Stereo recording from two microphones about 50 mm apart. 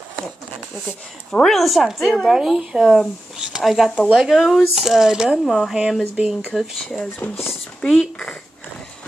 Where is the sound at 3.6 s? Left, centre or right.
Centre.